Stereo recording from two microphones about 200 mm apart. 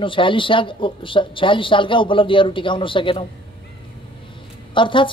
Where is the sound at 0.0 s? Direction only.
25° left (ahead or behind).